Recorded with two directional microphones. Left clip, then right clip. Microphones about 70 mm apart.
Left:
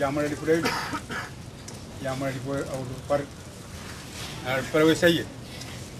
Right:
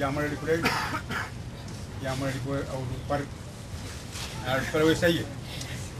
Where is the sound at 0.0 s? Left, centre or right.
Centre.